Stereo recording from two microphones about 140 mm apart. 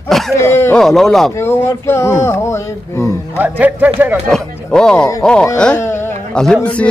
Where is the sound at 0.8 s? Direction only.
Centre (ahead or behind).